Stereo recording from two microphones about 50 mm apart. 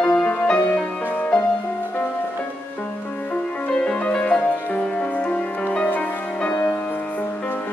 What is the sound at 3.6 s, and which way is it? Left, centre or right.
Music, left.